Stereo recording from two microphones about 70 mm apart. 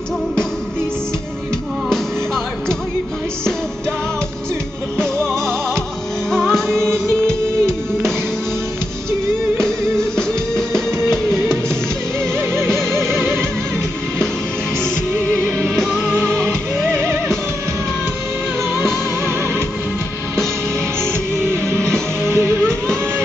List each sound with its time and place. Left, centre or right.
5.2 s music: centre
9.6 s music: centre
13.1 s music: right
15.4 s music: centre
16.9 s music: right
21.0 s music: right